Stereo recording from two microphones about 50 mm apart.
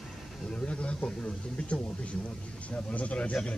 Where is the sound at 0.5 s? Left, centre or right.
Left.